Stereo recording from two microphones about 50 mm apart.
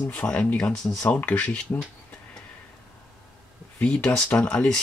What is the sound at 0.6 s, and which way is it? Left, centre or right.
Speech, centre.